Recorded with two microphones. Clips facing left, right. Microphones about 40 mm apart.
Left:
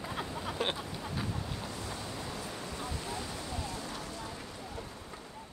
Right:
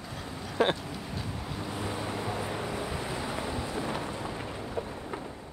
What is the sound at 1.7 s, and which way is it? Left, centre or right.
Vehicle, right.